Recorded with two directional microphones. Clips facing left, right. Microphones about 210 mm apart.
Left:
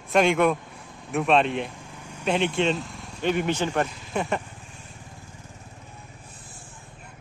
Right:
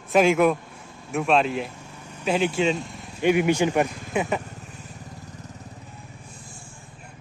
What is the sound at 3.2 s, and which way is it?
A man's voice, 10° right (ahead or behind).